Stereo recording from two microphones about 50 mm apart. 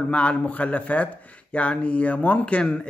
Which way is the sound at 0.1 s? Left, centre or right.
Left.